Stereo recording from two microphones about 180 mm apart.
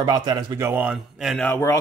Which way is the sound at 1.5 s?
15° left (ahead or behind).